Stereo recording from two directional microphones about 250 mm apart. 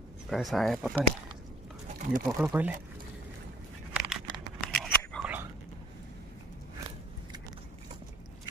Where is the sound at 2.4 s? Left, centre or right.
Centre.